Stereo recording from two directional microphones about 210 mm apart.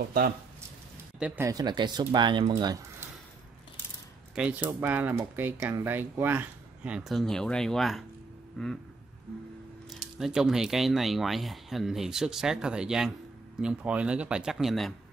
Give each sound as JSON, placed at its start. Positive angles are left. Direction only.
{"t": 1.2, "sound": "speech", "side_deg": -10}
{"t": 2.6, "sound": "a sound", "side_deg": -15}
{"t": 4.4, "sound": "speech", "side_deg": -5}
{"t": 9.8, "sound": "speech", "side_deg": 0}